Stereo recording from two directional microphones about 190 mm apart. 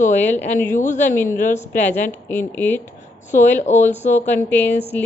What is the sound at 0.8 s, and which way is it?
Speech, 40° left (ahead or behind).